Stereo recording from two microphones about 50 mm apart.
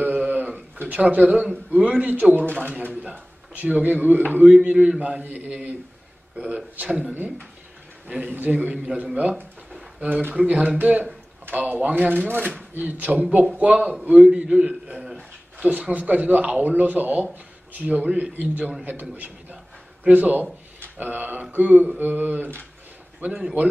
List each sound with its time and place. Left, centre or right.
0.0 s a sound: right
1.5 s a man's voice: right
2.9 s speech: right
4.5 s speech: right
5.2 s a man's voice: right
8.3 s speech: right
10.4 s a man's voice: right
11.9 s a man's voice: right; by 14.8 s centre
15.6 s a man's voice: right
18.3 s a man's voice: right
18.9 s a sound: right
21.0 s a man's voice: right
23.2 s speech: right